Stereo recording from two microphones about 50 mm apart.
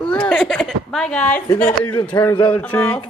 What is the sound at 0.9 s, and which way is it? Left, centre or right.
Speech, centre.